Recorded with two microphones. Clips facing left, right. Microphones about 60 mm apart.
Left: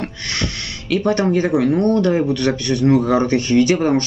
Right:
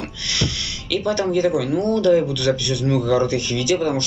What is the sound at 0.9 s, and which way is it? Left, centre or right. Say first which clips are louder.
Speech: left 3 dB; left.